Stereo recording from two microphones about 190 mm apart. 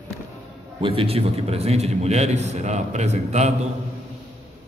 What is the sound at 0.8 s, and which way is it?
A man's voice, 30° right (ahead or behind).